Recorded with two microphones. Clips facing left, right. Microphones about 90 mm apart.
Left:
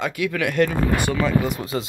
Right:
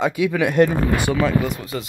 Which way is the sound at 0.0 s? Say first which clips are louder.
Right 4 dB; 20° right (ahead or behind).